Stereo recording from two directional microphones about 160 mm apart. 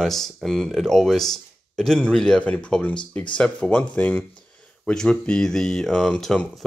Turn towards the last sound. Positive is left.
turn(degrees=5)  # may be behind; listen again after turning